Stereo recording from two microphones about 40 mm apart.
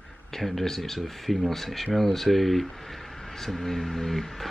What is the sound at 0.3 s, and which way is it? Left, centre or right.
Speech, centre.